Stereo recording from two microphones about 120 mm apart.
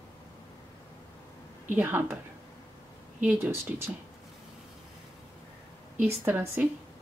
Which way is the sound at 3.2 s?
15° right (ahead or behind).